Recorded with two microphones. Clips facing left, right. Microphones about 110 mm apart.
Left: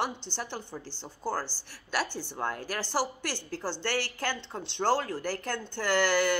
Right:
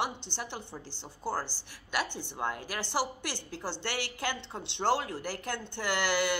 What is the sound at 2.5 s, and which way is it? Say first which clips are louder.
Speech: left 3 dB; 45° left (ahead or behind).